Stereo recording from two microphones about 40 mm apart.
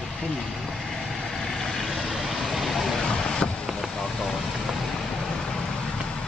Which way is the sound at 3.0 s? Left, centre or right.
Centre.